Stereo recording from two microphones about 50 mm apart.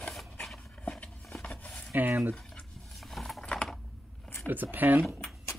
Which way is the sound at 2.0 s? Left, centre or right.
Right.